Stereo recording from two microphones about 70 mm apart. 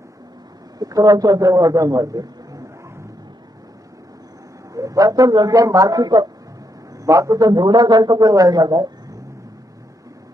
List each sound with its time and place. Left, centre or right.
0.7 s a man's voice: right
4.7 s speech: right
5.5 s a man's voice: right
7.1 s speech: right